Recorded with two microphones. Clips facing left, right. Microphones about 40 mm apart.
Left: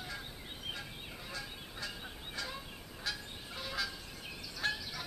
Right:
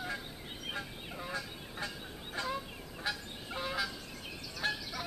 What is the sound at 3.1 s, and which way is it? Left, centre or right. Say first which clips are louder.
Fowl: right 3 dB; right.